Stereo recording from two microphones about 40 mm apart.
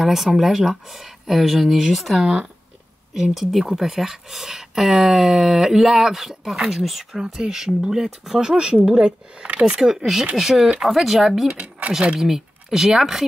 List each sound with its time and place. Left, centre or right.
0.0 s speech: centre
9.4 s speech: right
9.7 s speech: centre
11.9 s speech: right
12.2 s speech: centre